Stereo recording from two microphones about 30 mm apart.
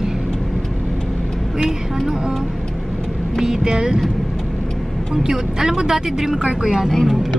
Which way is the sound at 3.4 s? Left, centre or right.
Right.